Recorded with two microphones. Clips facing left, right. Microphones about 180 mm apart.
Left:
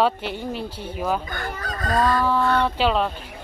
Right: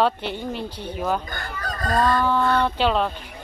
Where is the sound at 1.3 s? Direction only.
40° right (ahead or behind).